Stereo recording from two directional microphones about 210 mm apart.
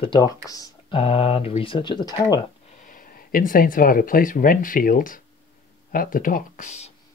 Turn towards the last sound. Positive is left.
turn(degrees=35)  # may be behind; listen again after turning